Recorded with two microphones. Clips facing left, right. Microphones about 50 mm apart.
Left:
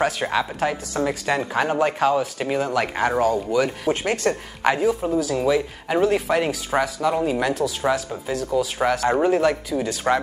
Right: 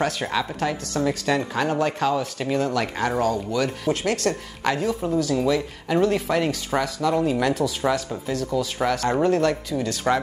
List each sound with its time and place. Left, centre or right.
0.0 s speech: centre